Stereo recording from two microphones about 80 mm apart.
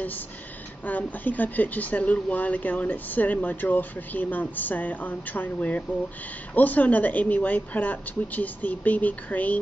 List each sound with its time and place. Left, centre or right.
0.8 s speech: left